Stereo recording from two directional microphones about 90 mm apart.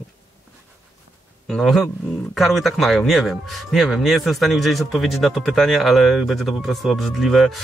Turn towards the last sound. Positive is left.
turn(degrees=0)  # may be behind; listen again after turning